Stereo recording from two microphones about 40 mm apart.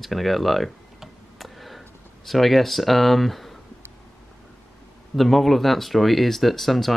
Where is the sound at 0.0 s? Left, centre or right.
Centre.